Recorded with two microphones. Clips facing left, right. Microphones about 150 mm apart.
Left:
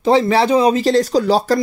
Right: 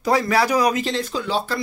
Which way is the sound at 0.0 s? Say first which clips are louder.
Left 5 dB; 25° left (ahead or behind).